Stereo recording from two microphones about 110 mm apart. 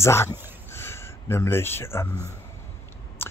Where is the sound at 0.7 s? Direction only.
20° left (ahead or behind).